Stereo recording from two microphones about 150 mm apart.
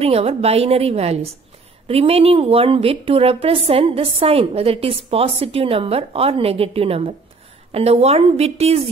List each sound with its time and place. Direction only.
0.0 s a woman's voice: 40° right (ahead or behind)